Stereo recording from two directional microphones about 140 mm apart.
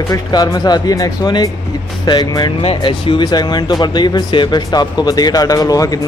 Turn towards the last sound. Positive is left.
turn(degrees=25)  # may be behind; listen again after turning